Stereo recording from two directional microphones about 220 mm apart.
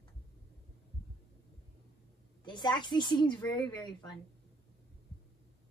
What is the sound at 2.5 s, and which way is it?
A woman's voice, 20° left (ahead or behind).